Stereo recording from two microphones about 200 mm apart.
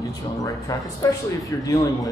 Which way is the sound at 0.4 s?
15° left (ahead or behind).